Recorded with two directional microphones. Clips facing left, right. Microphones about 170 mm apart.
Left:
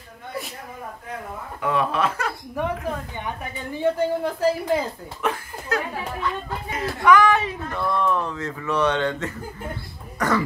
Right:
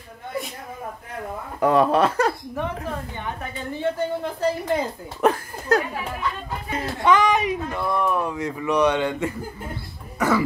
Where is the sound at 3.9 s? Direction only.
5° left (ahead or behind).